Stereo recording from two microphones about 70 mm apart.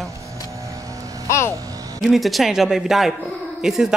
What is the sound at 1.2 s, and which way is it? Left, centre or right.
Speech, left.